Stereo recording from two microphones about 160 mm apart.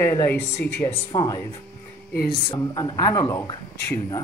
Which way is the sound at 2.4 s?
30° left (ahead or behind).